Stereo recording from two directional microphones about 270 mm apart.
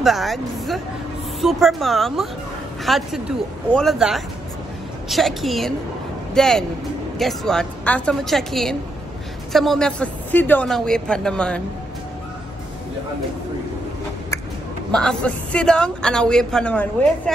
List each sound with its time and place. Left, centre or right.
0.0 s a woman's voice: centre
14.9 s a woman's voice: centre